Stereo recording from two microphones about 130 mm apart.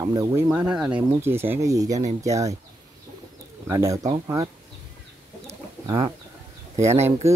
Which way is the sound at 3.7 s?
25° right (ahead or behind).